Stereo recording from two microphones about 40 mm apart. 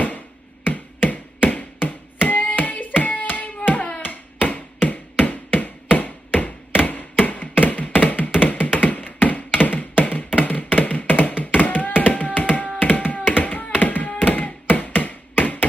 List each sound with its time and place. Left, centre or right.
0.7 s a sound: left
2.2 s hands: left
5.2 s tap: left
8.0 s music: left
9.6 s tap: left
15.0 s a sound: left